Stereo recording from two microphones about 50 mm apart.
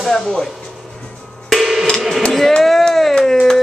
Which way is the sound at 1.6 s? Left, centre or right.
Centre.